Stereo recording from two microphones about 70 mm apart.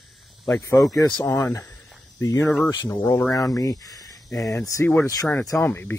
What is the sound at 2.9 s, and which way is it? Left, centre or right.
Speech, left.